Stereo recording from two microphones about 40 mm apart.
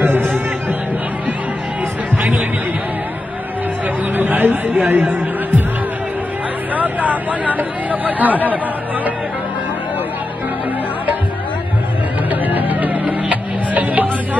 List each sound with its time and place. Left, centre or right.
0.0 s music: right
4.1 s music: right
6.7 s vehicle: right
12.3 s music: right